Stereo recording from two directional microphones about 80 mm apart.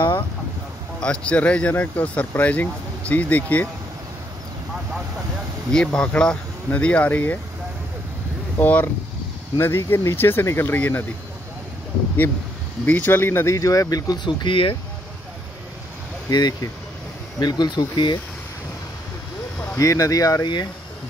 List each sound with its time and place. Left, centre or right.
1.0 s speech: centre
5.7 s speech: centre
8.5 s speech: left
12.8 s speech: left
13.6 s speech: left
14.2 s speech: left
16.3 s speech: left
19.7 s speech: left